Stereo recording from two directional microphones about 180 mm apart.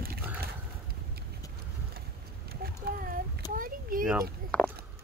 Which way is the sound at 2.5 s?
55° right (ahead or behind).